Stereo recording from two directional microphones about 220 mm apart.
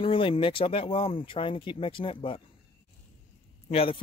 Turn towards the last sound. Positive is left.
turn(degrees=25)  # may be behind; listen again after turning